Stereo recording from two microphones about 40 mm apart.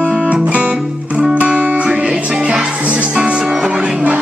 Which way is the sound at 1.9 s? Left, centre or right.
Right.